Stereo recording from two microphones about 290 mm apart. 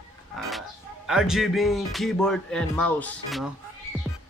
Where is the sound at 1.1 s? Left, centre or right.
Centre.